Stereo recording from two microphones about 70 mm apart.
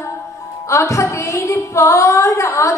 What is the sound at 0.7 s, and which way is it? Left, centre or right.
A woman's voice, left.